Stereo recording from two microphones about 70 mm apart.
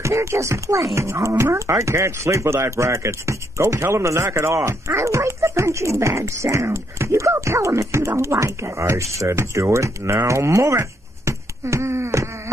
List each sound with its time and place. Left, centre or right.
0.0 s speech: right